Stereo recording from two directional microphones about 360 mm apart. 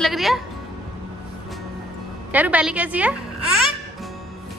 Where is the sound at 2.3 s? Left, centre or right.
Centre.